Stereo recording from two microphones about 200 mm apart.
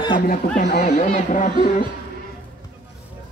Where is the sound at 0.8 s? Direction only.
35° left (ahead or behind).